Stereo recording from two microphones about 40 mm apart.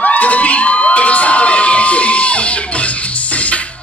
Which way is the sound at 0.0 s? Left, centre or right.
Left.